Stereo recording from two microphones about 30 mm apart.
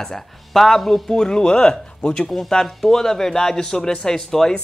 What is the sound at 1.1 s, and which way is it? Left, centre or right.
Speech, left.